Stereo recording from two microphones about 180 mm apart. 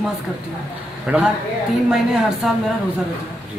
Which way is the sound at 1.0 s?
5° right (ahead or behind).